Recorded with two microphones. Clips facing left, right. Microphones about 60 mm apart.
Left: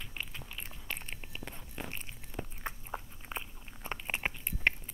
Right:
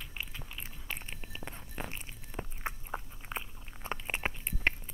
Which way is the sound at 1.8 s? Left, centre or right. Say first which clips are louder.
Even; centre.